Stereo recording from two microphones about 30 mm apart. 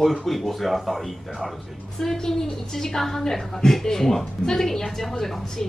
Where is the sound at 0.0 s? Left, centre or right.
Centre.